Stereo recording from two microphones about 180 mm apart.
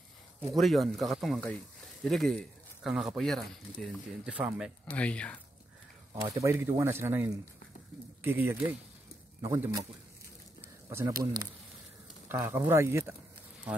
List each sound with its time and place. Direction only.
0.5 s speech: centre (ahead or behind)
4.8 s speech: 5° left (ahead or behind)
6.2 s speech: 15° right (ahead or behind)
10.9 s speech: 15° right (ahead or behind)
12.3 s speech: 15° right (ahead or behind)